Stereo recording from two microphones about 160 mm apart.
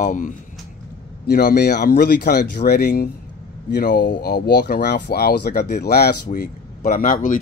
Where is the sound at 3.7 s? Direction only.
75° left (ahead or behind).